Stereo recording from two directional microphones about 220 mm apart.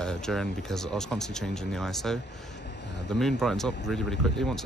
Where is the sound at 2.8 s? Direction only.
50° left (ahead or behind).